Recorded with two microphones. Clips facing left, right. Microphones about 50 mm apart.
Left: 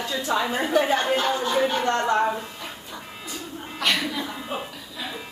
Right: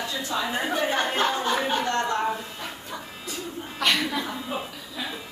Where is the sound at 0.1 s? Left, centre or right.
Left.